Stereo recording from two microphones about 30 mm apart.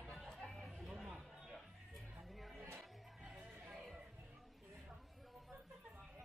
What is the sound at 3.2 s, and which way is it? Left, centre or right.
Music, right.